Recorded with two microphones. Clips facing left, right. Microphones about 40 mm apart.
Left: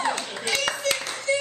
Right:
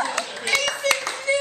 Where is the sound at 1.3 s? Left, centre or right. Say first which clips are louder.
Right 2 dB; right.